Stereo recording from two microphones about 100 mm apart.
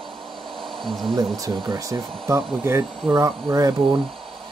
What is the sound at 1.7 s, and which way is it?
Speech, 35° right (ahead or behind).